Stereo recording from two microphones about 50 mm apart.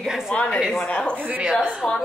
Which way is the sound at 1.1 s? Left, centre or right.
Right.